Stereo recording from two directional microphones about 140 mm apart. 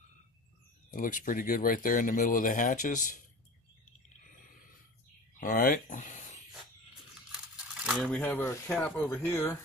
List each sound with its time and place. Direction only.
0.9 s speech: 75° left (ahead or behind)
5.4 s speech: 75° left (ahead or behind); by 6.4 s 60° left (ahead or behind)
7.3 s rattle: 5° right (ahead or behind)
8.1 s speech: 10° left (ahead or behind)